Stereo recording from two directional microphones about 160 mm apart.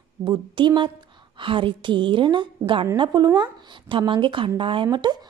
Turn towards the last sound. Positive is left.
turn(degrees=-25)  # may be behind; listen again after turning